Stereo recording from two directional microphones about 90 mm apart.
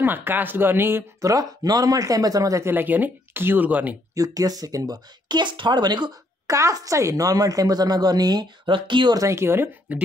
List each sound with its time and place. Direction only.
0.0 s speech: 25° right (ahead or behind)
1.3 s speech: 45° right (ahead or behind)
2.7 s speech: 20° right (ahead or behind)
4.1 s speech: 40° right (ahead or behind)
6.5 s speech: 40° right (ahead or behind); by 9.1 s 65° right (ahead or behind)
9.1 s speech: 35° right (ahead or behind)